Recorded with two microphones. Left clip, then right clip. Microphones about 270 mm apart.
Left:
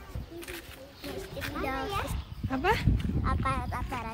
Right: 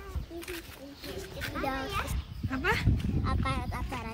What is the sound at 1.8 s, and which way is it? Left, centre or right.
Speech, centre.